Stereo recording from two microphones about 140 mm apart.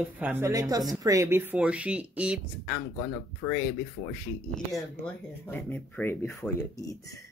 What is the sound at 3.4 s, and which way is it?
Speech, 35° left (ahead or behind).